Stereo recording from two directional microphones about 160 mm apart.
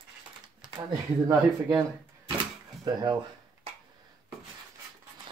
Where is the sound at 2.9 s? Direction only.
25° right (ahead or behind).